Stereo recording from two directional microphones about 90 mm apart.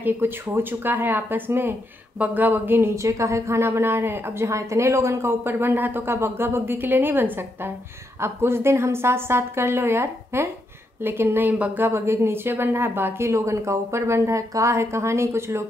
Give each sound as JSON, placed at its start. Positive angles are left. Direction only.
{"t": 0.0, "sound": "a woman's voice", "side_deg": -25}
{"t": 3.0, "sound": "a woman's voice", "side_deg": -35}